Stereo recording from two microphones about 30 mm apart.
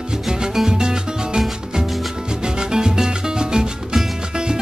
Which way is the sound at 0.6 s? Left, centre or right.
Right.